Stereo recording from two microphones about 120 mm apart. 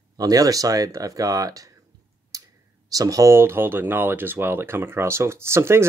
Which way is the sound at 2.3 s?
30° right (ahead or behind).